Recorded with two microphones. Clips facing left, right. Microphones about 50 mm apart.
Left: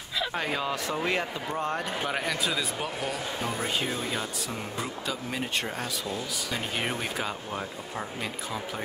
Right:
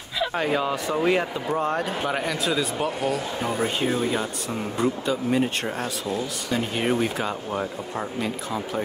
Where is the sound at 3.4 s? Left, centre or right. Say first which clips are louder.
Right 5 dB; centre.